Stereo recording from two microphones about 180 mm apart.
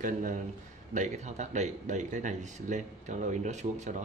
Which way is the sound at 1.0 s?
40° right (ahead or behind).